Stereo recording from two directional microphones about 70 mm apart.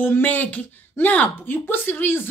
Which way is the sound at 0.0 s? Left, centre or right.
Left.